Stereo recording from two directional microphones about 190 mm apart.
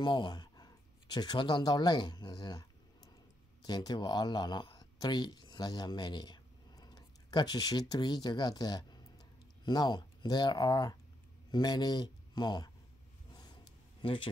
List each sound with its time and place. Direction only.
0.0 s speech: 25° left (ahead or behind)
3.6 s speech: 20° left (ahead or behind)
14.0 s speech: 25° left (ahead or behind)